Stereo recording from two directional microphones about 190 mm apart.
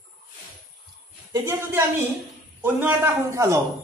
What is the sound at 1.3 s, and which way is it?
Speech, 15° right (ahead or behind).